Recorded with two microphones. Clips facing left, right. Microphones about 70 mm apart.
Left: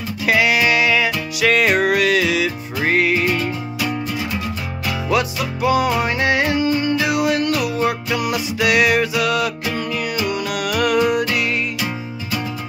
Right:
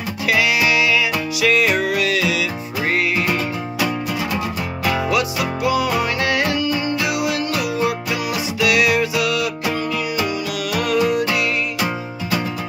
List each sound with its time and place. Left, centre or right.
0.3 s music: left
5.1 s music: left
6.8 s music: left
10.3 s music: left